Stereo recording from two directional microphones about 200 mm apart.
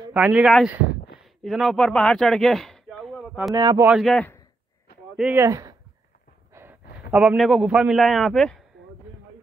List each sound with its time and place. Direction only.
0.1 s speech: 5° right (ahead or behind)
3.5 s speech: 20° right (ahead or behind)
3.8 s speech: centre (ahead or behind)
5.1 s a man's voice: 10° right (ahead or behind)